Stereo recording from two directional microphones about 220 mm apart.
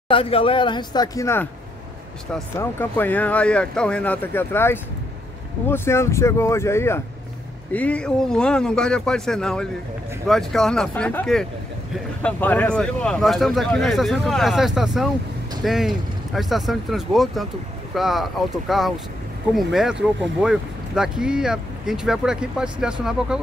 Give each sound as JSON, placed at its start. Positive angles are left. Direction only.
{"t": 0.1, "sound": "speech", "side_deg": 25}
{"t": 2.5, "sound": "speech", "side_deg": 10}